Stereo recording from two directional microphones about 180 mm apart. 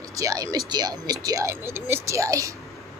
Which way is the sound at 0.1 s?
20° right (ahead or behind).